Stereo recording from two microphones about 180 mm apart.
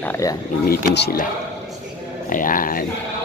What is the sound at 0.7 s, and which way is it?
Speech, 65° left (ahead or behind).